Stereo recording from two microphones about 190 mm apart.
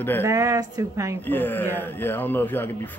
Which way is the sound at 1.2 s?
10° left (ahead or behind).